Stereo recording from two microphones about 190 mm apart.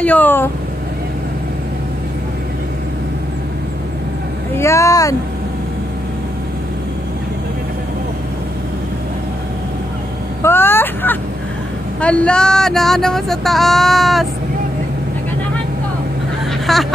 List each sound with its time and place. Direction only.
0.0 s speech: 10° left (ahead or behind)
4.6 s speech: 15° left (ahead or behind)
10.4 s vehicle: 10° left (ahead or behind)
12.0 s speech: 5° left (ahead or behind)
16.7 s speech: centre (ahead or behind)